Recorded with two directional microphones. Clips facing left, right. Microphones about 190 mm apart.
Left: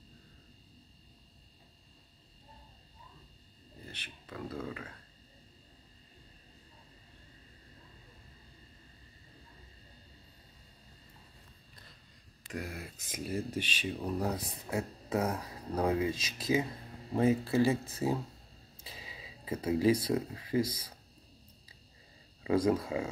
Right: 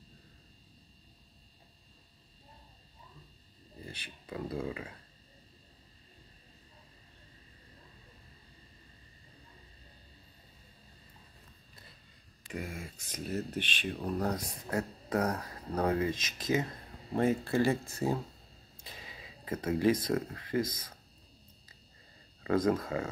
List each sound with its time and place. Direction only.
3.8 s speech: 10° right (ahead or behind)
12.4 s speech: centre (ahead or behind)
16.2 s speech: 30° left (ahead or behind)
17.1 s speech: centre (ahead or behind)
18.9 s a sound: 5° left (ahead or behind)
19.8 s speech: 10° left (ahead or behind)
22.4 s speech: 10° left (ahead or behind)